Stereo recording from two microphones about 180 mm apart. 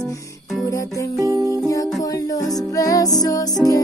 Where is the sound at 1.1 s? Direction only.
15° right (ahead or behind).